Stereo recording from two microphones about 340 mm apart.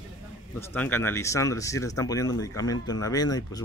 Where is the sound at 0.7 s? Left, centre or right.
Centre.